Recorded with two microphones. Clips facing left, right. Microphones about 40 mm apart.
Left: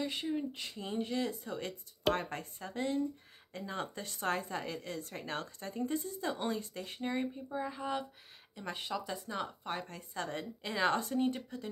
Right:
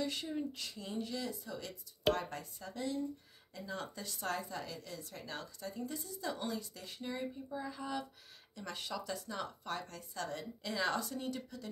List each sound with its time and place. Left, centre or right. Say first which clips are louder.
0.0 s speech: left 2 dB; left